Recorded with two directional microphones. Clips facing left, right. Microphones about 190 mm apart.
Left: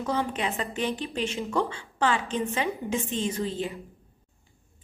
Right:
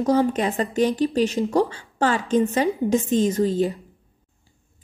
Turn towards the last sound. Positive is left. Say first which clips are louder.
# right 9 dB
turn(degrees=-40)  # may be behind; listen again after turning